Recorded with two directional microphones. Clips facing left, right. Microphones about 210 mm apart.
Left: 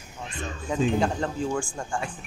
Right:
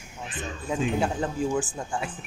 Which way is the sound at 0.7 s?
5° right (ahead or behind).